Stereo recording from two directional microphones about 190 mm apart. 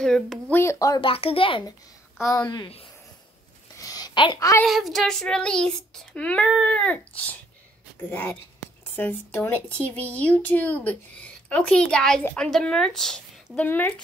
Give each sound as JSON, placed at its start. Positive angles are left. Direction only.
{"t": 0.0, "sound": "child singing", "side_deg": 5}
{"t": 0.6, "sound": "speech", "side_deg": 15}
{"t": 3.8, "sound": "a sound", "side_deg": 20}
{"t": 4.6, "sound": "child singing", "side_deg": 0}
{"t": 8.1, "sound": "a woman's voice", "side_deg": 10}